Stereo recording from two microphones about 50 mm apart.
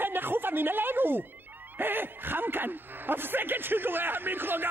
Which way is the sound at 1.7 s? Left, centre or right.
Right.